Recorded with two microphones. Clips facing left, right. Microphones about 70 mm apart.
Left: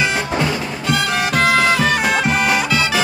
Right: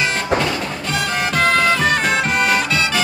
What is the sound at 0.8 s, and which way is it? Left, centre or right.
Music, centre.